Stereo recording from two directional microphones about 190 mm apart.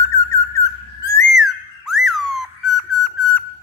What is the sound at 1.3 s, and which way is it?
Whistle, centre (ahead or behind).